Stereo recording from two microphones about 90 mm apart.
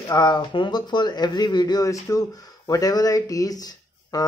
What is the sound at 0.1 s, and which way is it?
Speech, 55° left (ahead or behind).